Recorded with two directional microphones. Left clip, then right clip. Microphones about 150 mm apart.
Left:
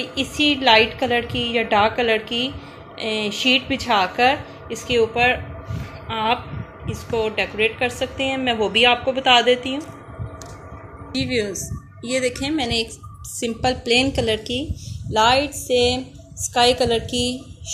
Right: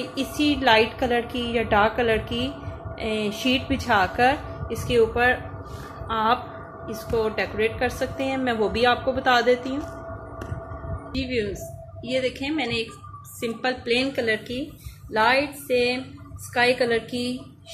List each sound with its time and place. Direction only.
0.0 s a woman's voice: 10° left (ahead or behind)
11.1 s a woman's voice: 40° left (ahead or behind); by 14.3 s 60° left (ahead or behind)
15.1 s speech: 30° left (ahead or behind)